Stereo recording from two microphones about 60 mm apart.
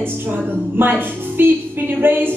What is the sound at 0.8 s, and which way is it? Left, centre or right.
Speech, right.